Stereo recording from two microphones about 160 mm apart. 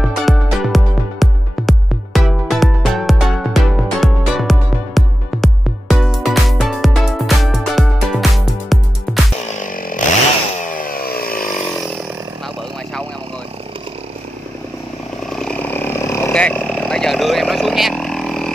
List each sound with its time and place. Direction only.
0.1 s music: centre (ahead or behind)
9.5 s music: 55° left (ahead or behind)
10.6 s chainsaw: 55° left (ahead or behind)
15.2 s a sound: 5° left (ahead or behind)
16.3 s vehicle: 5° left (ahead or behind)